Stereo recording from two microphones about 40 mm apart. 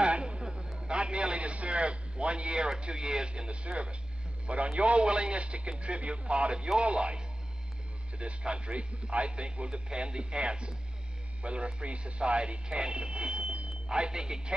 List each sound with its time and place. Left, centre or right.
0.0 s a sound: right
0.7 s a man's voice: right
13.8 s a man's voice: right